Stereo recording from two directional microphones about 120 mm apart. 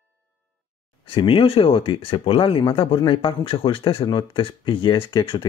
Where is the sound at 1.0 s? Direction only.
45° left (ahead or behind).